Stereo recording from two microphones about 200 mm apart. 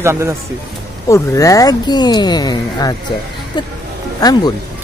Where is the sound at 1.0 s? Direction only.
15° left (ahead or behind).